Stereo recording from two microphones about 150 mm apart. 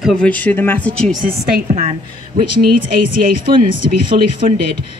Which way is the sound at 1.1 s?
70° right (ahead or behind).